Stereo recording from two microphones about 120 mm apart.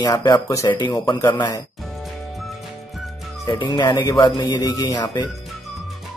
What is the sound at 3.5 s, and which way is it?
Speech, 40° left (ahead or behind).